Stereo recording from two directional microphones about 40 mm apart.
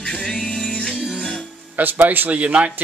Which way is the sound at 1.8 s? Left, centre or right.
Right.